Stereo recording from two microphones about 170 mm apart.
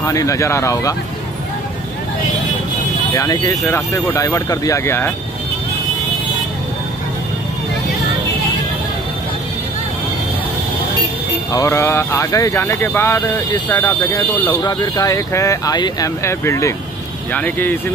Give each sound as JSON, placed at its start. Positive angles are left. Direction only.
{"t": 0.0, "sound": "speech", "side_deg": 20}
{"t": 3.1, "sound": "speech", "side_deg": 20}
{"t": 11.5, "sound": "speech", "side_deg": 15}